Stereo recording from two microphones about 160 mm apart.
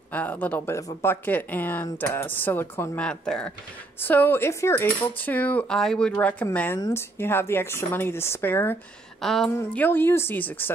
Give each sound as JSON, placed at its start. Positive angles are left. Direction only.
{"t": 0.1, "sound": "speech", "side_deg": 10}
{"t": 9.2, "sound": "a woman's voice", "side_deg": 0}
{"t": 9.6, "sound": "speech", "side_deg": 10}